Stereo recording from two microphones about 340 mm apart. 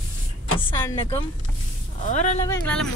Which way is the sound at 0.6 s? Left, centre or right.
Centre.